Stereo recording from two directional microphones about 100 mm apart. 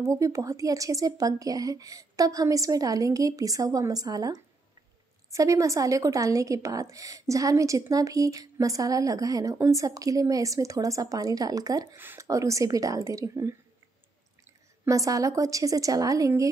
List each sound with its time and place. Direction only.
0.0 s a woman's voice: 30° right (ahead or behind)
14.9 s a woman's voice: 35° right (ahead or behind)